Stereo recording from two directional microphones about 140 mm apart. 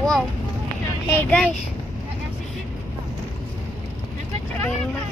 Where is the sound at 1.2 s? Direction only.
10° left (ahead or behind).